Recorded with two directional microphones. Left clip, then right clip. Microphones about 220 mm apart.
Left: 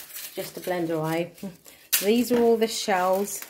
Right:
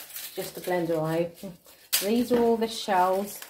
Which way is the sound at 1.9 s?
35° left (ahead or behind).